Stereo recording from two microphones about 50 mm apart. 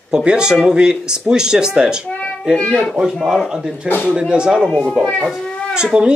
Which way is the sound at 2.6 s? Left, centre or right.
Centre.